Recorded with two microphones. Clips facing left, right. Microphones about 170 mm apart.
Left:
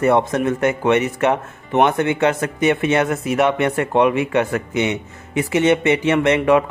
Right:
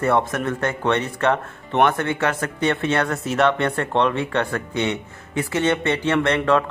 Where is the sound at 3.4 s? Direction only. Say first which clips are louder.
Left 1 dB; 10° left (ahead or behind).